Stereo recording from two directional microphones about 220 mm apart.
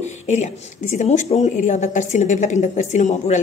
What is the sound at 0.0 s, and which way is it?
Speech, 30° left (ahead or behind).